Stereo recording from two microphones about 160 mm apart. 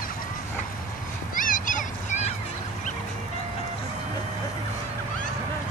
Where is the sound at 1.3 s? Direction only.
60° left (ahead or behind).